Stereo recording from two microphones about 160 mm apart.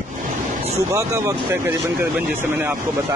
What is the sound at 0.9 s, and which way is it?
Speech, 20° right (ahead or behind).